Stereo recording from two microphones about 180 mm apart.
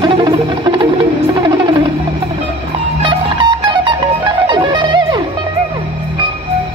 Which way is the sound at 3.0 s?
25° right (ahead or behind).